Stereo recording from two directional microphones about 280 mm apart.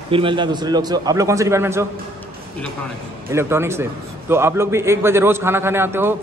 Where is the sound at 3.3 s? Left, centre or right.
Centre.